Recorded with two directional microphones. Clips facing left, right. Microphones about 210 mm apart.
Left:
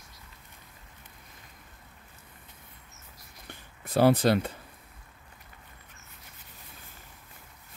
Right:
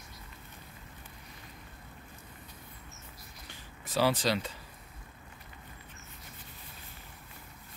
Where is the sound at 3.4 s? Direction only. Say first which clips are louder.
Left 4 dB; 55° left (ahead or behind).